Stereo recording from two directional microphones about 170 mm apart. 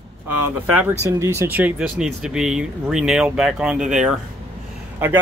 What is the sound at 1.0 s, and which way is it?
Speech, 15° right (ahead or behind).